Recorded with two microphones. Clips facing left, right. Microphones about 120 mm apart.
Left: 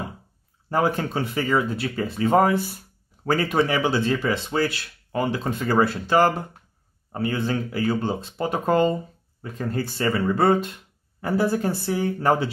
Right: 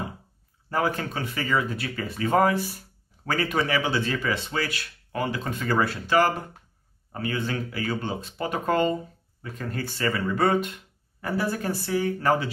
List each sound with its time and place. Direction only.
0.7 s speech: 25° left (ahead or behind)